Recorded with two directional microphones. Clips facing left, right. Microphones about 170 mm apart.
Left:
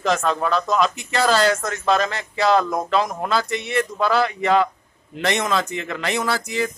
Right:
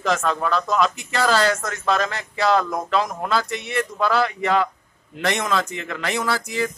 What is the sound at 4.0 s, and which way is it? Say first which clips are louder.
Speech: even; 10° left (ahead or behind).